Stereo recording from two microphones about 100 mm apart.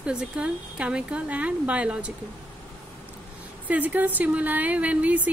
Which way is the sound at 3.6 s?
15° right (ahead or behind).